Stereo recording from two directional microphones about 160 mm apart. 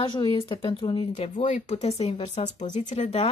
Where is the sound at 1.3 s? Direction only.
50° left (ahead or behind).